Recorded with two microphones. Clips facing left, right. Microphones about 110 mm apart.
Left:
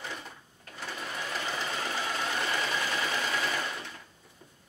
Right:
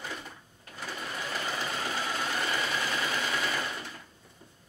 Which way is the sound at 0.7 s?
Centre (ahead or behind).